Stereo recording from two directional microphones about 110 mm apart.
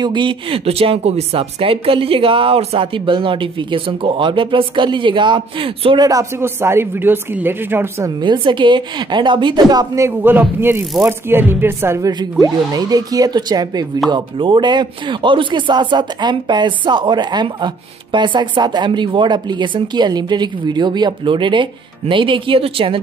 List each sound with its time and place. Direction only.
0.0 s speech: 45° right (ahead or behind)
0.7 s speech: 65° right (ahead or behind); by 6.0 s 50° right (ahead or behind)
6.0 s speech: 25° right (ahead or behind)
8.2 s speech: 45° right (ahead or behind)
10.0 s speech: 20° right (ahead or behind)
12.1 s speech: 40° right (ahead or behind); by 22.9 s 55° right (ahead or behind)